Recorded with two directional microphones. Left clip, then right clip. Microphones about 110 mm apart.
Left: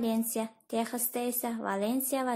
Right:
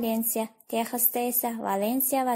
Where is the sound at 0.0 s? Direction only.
30° right (ahead or behind).